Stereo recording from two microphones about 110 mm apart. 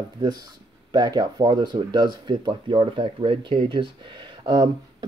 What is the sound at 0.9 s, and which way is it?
Speech, 40° right (ahead or behind).